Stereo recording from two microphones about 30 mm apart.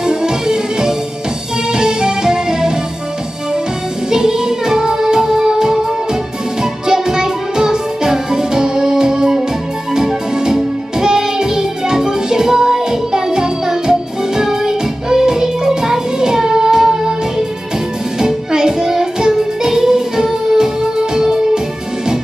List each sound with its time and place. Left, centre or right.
0.0 s music: right
4.1 s music: right
18.2 s music: right